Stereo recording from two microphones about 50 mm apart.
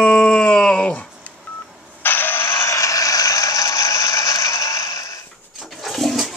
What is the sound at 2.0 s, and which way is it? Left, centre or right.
Mechanisms, left.